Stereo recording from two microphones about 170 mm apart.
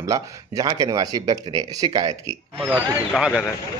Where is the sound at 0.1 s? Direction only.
20° right (ahead or behind).